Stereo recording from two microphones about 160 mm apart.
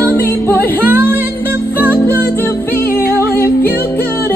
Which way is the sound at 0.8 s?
10° right (ahead or behind).